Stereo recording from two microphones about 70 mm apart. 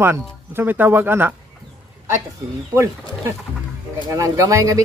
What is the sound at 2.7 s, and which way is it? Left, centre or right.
Speech, right.